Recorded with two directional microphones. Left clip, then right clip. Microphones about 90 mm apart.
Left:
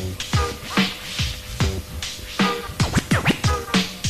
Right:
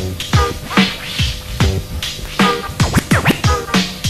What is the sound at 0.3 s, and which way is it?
Music, 20° left (ahead or behind).